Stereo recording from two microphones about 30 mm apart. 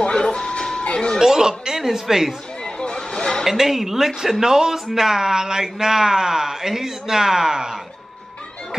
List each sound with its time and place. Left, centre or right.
0.0 s a sound: left
0.3 s music: left
1.2 s speech: right
2.6 s chatter: left
3.4 s speech: centre